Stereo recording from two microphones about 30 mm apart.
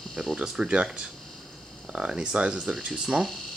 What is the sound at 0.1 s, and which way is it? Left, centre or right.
Speech, centre.